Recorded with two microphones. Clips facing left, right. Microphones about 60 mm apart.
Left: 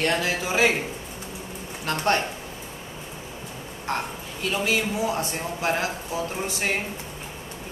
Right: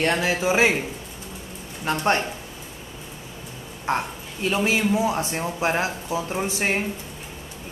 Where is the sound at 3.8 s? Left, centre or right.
Right.